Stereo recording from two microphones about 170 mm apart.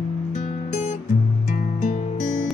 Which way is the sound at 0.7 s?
45° left (ahead or behind).